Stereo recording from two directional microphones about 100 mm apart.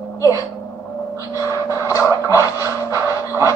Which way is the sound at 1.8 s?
30° left (ahead or behind).